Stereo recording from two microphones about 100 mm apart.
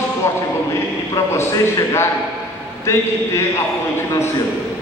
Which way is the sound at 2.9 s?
30° left (ahead or behind).